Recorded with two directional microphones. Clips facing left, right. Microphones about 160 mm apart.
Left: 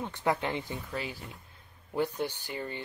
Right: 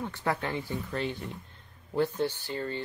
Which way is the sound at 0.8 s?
5° left (ahead or behind).